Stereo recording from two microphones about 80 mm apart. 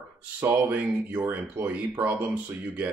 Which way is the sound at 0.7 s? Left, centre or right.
Right.